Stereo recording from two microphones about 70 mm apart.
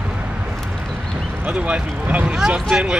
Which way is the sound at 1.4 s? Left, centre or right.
Centre.